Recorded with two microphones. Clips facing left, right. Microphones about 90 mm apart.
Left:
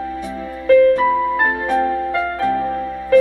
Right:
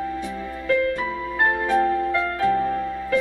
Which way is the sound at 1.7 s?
30° left (ahead or behind).